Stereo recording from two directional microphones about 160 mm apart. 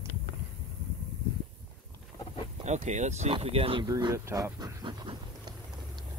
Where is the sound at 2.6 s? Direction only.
45° right (ahead or behind).